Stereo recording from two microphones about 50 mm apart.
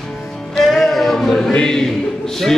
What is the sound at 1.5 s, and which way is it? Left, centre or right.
Music, centre.